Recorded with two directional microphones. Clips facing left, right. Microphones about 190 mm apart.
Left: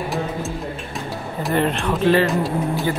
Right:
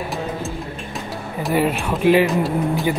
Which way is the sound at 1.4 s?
5° right (ahead or behind).